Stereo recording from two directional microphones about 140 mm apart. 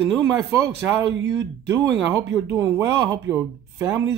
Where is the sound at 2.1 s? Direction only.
20° right (ahead or behind).